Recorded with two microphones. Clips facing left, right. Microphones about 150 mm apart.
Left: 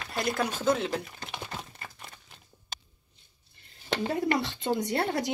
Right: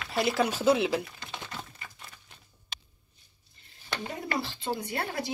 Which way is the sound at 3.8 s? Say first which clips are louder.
Left 8 dB; 25° left (ahead or behind).